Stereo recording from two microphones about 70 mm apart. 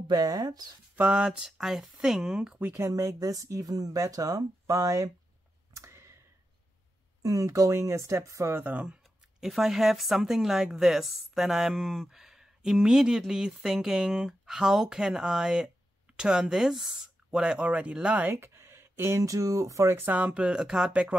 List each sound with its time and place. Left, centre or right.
0.1 s speech: right
0.9 s speech: centre
2.7 s speech: right
5.7 s a sound: right
7.2 s speech: right
8.6 s speech: right
9.4 s a woman's voice: centre
18.2 s speech: right
20.1 s speech: right